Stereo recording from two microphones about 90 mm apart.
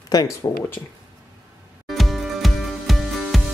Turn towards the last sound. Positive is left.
turn(degrees=0)  # may be behind; listen again after turning